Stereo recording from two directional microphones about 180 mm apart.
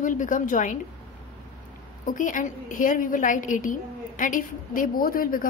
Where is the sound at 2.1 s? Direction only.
45° left (ahead or behind).